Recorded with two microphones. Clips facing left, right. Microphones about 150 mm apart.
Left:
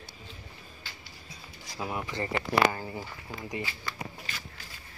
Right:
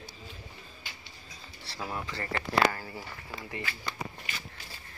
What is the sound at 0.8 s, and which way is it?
Music, 15° right (ahead or behind).